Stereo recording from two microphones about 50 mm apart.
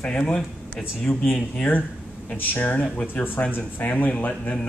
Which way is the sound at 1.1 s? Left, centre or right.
Centre.